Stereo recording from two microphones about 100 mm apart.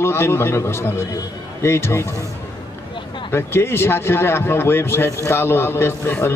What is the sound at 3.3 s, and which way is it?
A man's voice, 25° left (ahead or behind).